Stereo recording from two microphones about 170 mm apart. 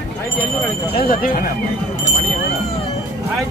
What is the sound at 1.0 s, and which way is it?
Speech, 55° left (ahead or behind).